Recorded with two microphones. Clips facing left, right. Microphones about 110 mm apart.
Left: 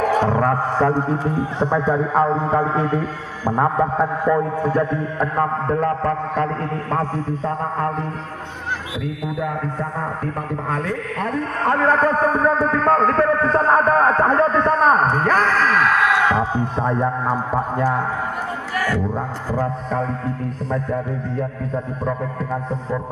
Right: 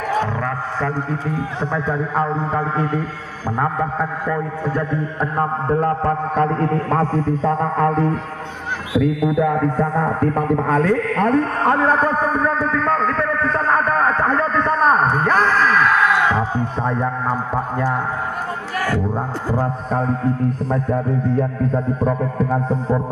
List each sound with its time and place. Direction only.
0.3 s a man's voice: 35° left (ahead or behind); by 4.4 s 10° left (ahead or behind)
4.7 s a man's voice: 5° right (ahead or behind)
6.0 s a sound: 40° right (ahead or behind)
7.6 s music: 85° right
9.4 s a man's voice: 75° right (ahead or behind); by 11.4 s 55° right (ahead or behind)
11.7 s a sound: 25° right (ahead or behind)
12.0 s a man's voice: 5° right (ahead or behind)
12.5 s a man's voice: 40° left (ahead or behind)
14.4 s a man's voice: 5° left (ahead or behind)
19.6 s speech: 40° right (ahead or behind)